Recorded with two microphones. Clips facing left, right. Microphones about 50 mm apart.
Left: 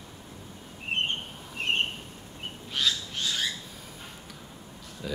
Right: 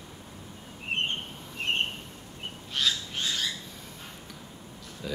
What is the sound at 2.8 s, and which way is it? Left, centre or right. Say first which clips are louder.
Frog: even; centre.